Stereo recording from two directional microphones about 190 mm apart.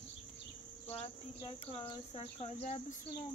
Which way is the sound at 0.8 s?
30° left (ahead or behind).